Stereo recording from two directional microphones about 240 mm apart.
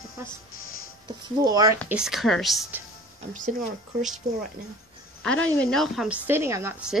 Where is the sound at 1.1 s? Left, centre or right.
Centre.